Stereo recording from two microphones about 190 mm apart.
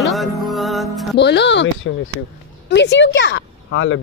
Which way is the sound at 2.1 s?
90° left.